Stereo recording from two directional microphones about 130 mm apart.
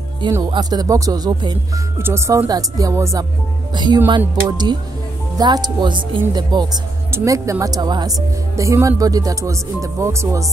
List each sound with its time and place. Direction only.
0.4 s speech: 30° right (ahead or behind)
2.0 s speech: 20° right (ahead or behind)
3.7 s speech: 35° right (ahead or behind)
7.1 s speech: 20° right (ahead or behind)